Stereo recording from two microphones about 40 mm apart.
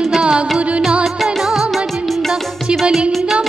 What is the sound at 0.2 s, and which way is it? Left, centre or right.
Carnatic music, right.